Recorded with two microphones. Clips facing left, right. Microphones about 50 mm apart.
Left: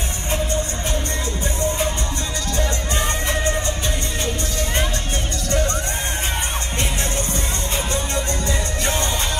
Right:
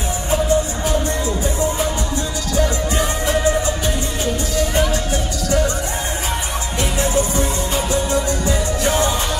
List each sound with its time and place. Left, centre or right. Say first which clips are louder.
0.3 s music: right 6 dB; left
2.5 s music: right 6 dB; left
3.4 s music: right 5 dB; right
4.2 s music: right 6 dB; left
6.8 s music: right 8 dB; left